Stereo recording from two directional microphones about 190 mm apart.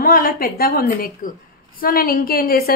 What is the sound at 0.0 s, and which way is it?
A woman's voice, 50° left (ahead or behind).